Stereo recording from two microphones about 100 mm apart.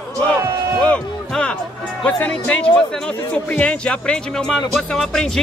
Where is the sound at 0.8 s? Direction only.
10° left (ahead or behind).